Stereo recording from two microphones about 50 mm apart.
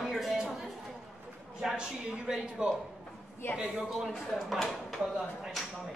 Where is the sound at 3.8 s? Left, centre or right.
Centre.